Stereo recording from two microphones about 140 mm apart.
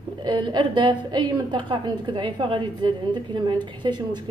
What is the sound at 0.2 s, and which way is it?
A woman's voice, 35° right (ahead or behind).